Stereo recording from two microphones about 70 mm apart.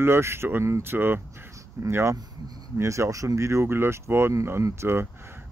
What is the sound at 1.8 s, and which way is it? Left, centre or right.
Speech, right.